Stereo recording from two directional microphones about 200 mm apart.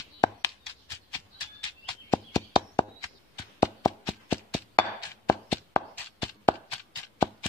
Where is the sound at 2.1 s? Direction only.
15° left (ahead or behind).